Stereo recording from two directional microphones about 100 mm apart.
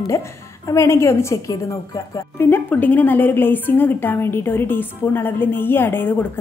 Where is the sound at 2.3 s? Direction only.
20° left (ahead or behind).